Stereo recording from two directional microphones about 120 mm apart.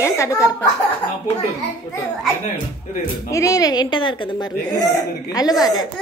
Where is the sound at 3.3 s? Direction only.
30° left (ahead or behind).